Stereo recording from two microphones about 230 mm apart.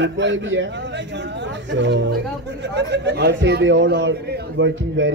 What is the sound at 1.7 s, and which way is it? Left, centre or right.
A man's voice, right.